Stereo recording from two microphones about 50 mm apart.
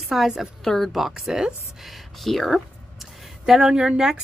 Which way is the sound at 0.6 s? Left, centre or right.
Centre.